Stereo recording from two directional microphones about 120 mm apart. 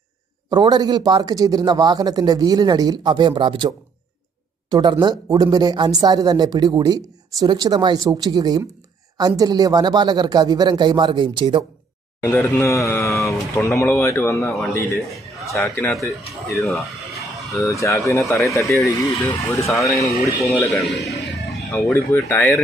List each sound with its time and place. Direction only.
0.5 s speech: 35° right (ahead or behind)
12.2 s speech: 20° left (ahead or behind)
16.0 s speech: 25° left (ahead or behind)
21.9 s speech: 15° left (ahead or behind)